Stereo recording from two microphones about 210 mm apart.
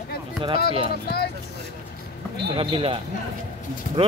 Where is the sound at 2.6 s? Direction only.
25° right (ahead or behind).